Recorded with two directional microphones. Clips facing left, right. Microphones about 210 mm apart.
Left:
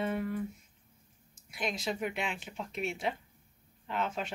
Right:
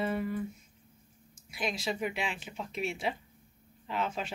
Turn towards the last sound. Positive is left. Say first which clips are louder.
# even
turn(degrees=0)  # may be behind; listen again after turning